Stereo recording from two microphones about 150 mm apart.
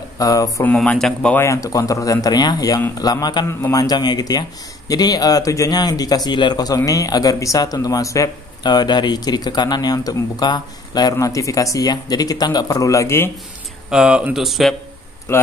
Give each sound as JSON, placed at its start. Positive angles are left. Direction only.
{"t": 0.2, "sound": "speech", "side_deg": 25}
{"t": 0.7, "sound": "speech", "side_deg": 10}
{"t": 1.4, "sound": "speech", "side_deg": 20}
{"t": 13.8, "sound": "speech", "side_deg": -5}